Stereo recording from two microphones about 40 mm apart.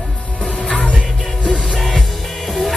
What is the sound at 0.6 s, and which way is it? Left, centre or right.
Music, left.